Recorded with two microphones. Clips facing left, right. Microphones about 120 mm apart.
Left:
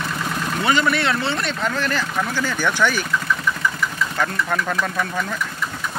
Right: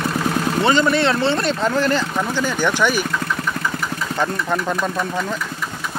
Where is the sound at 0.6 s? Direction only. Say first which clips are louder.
Right 3 dB; 30° right (ahead or behind).